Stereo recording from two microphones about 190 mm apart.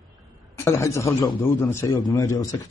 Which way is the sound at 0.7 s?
15° left (ahead or behind).